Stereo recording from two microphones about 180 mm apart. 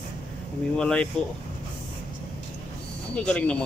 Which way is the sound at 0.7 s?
5° left (ahead or behind).